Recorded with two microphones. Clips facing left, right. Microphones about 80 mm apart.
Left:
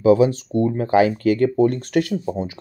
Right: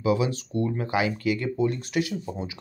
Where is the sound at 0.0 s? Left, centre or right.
Left.